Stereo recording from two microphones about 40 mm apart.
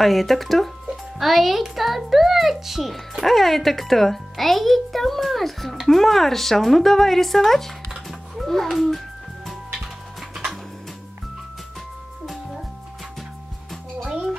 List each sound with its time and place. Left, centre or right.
0.0 s a child's voice: centre
14.0 s music: centre